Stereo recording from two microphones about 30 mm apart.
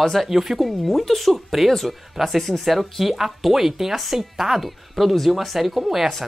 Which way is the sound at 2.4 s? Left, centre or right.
Centre.